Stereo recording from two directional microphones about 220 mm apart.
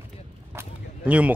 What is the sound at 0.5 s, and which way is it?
Whip, 5° right (ahead or behind).